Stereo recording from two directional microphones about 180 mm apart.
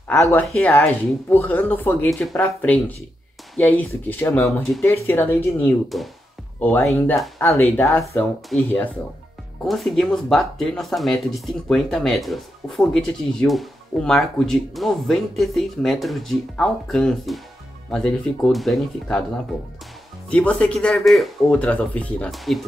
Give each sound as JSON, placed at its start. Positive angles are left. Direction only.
{"t": 0.2, "sound": "speech", "side_deg": 15}
{"t": 9.7, "sound": "speech", "side_deg": 0}
{"t": 19.5, "sound": "speech", "side_deg": 20}
{"t": 20.2, "sound": "speech", "side_deg": 5}